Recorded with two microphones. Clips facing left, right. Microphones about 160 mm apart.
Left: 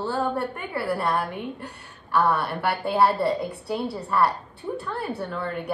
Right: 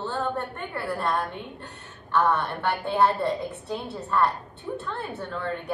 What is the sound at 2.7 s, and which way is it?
A woman's voice, 70° left (ahead or behind).